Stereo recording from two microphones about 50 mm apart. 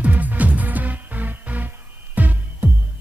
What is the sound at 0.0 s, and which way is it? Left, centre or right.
Music, right.